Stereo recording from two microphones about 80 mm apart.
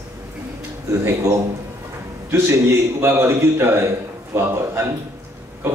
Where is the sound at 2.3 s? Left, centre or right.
Right.